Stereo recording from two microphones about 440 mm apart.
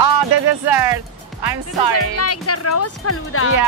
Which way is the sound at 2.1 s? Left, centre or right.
Left.